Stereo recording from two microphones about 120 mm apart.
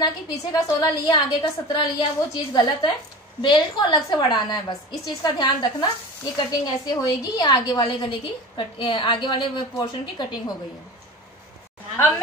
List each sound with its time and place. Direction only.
0.0 s a woman's voice: 35° left (ahead or behind)